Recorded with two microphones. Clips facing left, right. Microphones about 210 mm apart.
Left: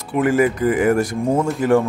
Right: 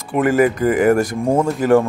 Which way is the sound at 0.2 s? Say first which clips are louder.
Right 2 dB; 45° right (ahead or behind).